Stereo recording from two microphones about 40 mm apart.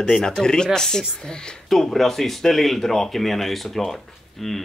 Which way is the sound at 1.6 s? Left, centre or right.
Centre.